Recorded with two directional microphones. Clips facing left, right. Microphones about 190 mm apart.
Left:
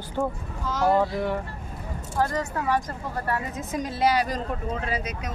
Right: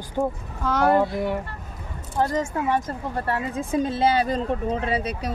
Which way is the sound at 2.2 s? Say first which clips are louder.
Right 3 dB; 20° right (ahead or behind).